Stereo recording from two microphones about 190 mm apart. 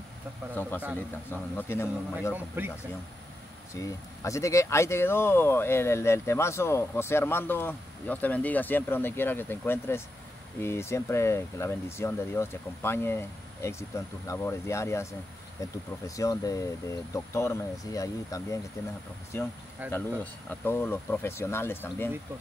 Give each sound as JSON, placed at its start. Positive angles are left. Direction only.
{"t": 0.6, "sound": "speech", "side_deg": 10}
{"t": 2.3, "sound": "speech", "side_deg": -10}
{"t": 3.7, "sound": "speech", "side_deg": 15}
{"t": 19.8, "sound": "speech", "side_deg": -10}
{"t": 20.6, "sound": "speech", "side_deg": 10}